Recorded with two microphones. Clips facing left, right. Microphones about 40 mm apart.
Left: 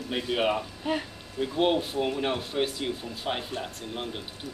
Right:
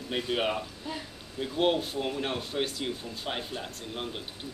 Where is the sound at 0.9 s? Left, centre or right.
Left.